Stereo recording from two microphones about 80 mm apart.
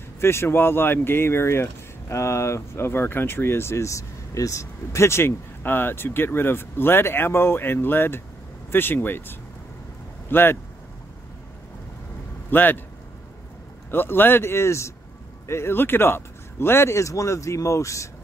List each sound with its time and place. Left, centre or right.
0.2 s speech: left
12.4 s a man's voice: left
13.8 s speech: left